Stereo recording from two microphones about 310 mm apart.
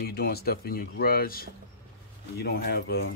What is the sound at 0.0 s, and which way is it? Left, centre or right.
Speech, left.